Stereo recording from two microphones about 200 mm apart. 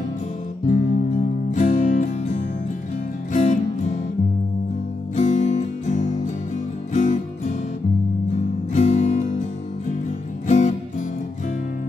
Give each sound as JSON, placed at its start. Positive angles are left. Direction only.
{"t": 0.7, "sound": "music", "side_deg": 40}
{"t": 5.1, "sound": "music", "side_deg": 35}
{"t": 8.7, "sound": "music", "side_deg": 35}
{"t": 10.4, "sound": "music", "side_deg": 40}